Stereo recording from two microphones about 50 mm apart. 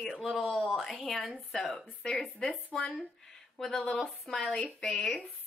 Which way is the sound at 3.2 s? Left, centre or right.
Centre.